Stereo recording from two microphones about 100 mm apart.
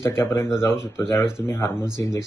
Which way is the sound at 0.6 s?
25° left (ahead or behind).